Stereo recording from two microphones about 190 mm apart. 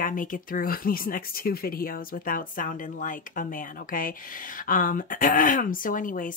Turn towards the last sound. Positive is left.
turn(degrees=45)  # may be behind; listen again after turning